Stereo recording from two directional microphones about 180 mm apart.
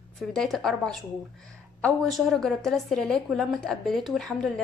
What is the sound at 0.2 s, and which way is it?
A woman's voice, centre (ahead or behind).